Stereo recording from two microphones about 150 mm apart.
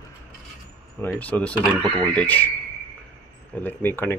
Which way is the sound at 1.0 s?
10° left (ahead or behind).